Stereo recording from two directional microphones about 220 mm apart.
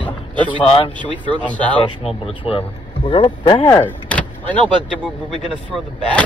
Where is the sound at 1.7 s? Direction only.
25° left (ahead or behind).